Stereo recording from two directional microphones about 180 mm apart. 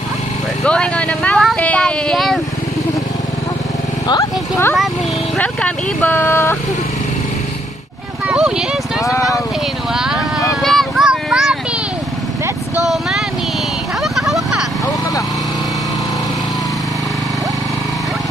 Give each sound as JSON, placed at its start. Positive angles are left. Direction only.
{"t": 0.7, "sound": "speech", "side_deg": 5}
{"t": 4.1, "sound": "speech", "side_deg": 15}
{"t": 8.3, "sound": "speech", "side_deg": -5}
{"t": 9.0, "sound": "speech", "side_deg": 20}
{"t": 9.9, "sound": "vehicle", "side_deg": -5}
{"t": 12.8, "sound": "speech", "side_deg": 0}
{"t": 14.1, "sound": "vehicle", "side_deg": 0}